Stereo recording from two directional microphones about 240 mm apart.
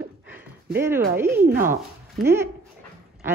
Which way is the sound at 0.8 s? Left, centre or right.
Centre.